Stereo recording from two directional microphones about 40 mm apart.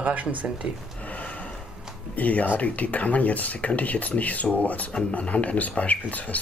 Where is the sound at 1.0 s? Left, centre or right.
Left.